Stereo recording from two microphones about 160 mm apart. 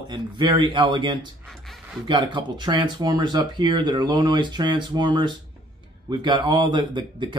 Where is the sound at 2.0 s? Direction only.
30° right (ahead or behind).